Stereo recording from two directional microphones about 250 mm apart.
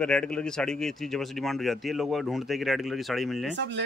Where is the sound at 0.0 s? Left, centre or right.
Centre.